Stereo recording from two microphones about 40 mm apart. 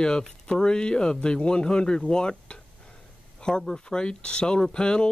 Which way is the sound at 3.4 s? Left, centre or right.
Centre.